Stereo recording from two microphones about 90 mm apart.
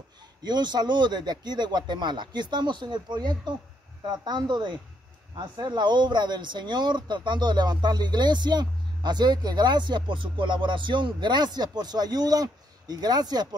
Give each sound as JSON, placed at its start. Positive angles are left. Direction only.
{"t": 0.4, "sound": "speech", "side_deg": -55}